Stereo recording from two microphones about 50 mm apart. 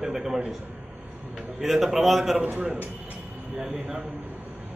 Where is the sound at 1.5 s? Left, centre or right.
Centre.